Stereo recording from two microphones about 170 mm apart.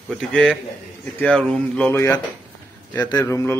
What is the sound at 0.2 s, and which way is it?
Speech, 5° left (ahead or behind).